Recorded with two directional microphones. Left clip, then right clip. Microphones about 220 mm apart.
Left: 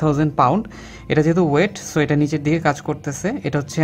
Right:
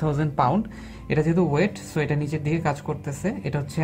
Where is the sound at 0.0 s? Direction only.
30° left (ahead or behind).